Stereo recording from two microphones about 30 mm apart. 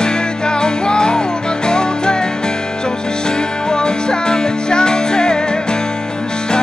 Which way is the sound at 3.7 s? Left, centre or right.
Left.